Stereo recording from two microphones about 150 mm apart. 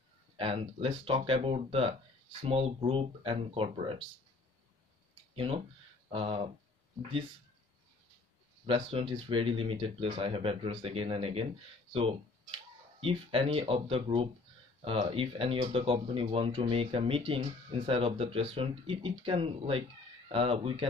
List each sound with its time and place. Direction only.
0.4 s speech: 40° right (ahead or behind)
5.3 s speech: 40° right (ahead or behind)
8.6 s speech: 35° right (ahead or behind)